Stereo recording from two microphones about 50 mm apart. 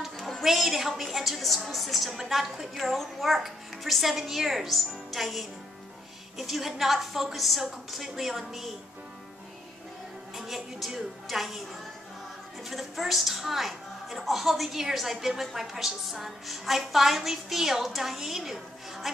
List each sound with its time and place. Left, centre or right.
0.0 s a sound: centre
0.5 s a woman's voice: centre
10.3 s a woman's voice: centre
12.6 s a woman's voice: centre